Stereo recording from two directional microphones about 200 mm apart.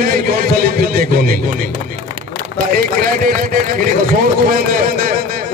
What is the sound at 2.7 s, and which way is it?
A man's voice, 45° right (ahead or behind).